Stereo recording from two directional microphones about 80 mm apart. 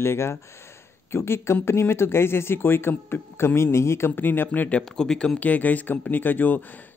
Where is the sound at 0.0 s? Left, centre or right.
Left; by 5.4 s centre.